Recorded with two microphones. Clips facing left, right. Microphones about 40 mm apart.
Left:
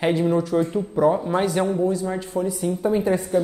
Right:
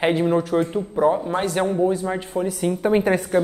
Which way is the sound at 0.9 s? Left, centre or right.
Centre.